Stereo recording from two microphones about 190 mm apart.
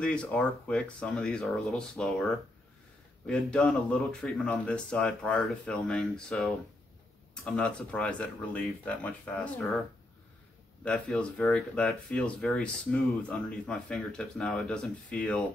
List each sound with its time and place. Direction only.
0.0 s speech: 5° left (ahead or behind)
3.3 s speech: 5° left (ahead or behind)